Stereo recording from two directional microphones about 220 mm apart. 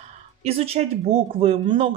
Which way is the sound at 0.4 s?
25° right (ahead or behind).